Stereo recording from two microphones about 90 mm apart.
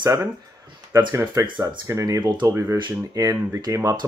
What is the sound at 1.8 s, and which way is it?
Speech, 35° right (ahead or behind).